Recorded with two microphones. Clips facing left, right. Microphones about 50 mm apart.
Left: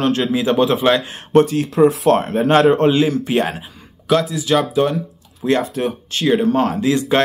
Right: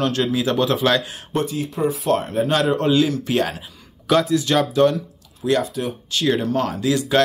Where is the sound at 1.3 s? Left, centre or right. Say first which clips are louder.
Left 10 dB; left.